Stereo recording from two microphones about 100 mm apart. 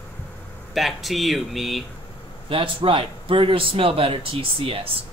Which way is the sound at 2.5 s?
60° right (ahead or behind).